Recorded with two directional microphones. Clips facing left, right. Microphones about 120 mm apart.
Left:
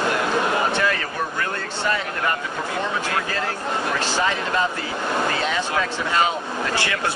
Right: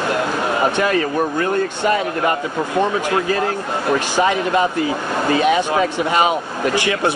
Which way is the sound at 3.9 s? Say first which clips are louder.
Right 8 dB; 15° right (ahead or behind).